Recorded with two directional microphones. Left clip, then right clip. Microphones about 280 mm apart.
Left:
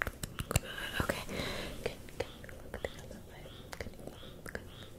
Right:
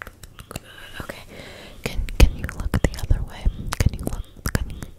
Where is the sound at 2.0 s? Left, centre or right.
Right.